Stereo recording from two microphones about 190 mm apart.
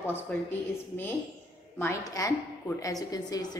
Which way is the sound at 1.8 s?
15° left (ahead or behind).